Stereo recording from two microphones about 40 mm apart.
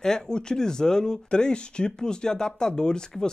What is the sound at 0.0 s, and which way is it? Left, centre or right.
Speech, centre.